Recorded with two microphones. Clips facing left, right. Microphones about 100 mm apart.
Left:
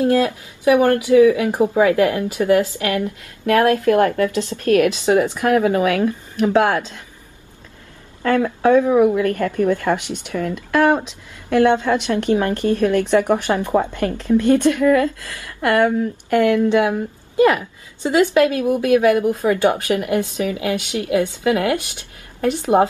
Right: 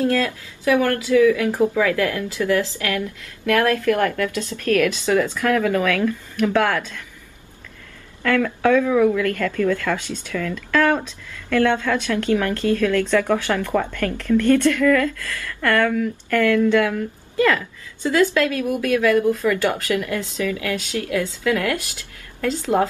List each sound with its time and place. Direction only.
0.0 s speech: 20° left (ahead or behind)
8.2 s a woman's voice: 25° left (ahead or behind)